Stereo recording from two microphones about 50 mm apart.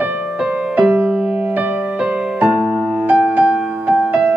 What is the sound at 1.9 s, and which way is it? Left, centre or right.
Music, right.